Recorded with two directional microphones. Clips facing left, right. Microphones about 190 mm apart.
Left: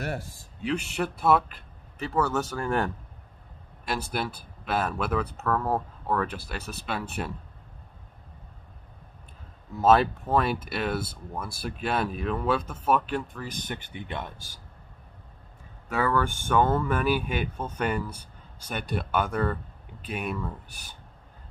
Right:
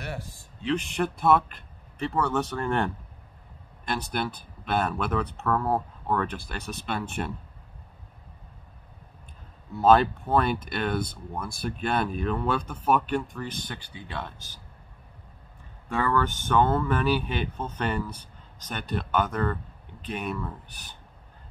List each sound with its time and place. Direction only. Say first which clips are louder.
0.7 s speech: right 2 dB; 5° left (ahead or behind)
9.8 s speech: right 1 dB; centre (ahead or behind)
13.5 s speech: left 1 dB; 20° left (ahead or behind)
15.9 s speech: even; 10° left (ahead or behind)